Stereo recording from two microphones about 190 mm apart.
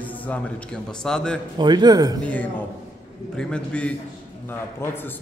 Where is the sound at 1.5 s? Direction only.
20° right (ahead or behind).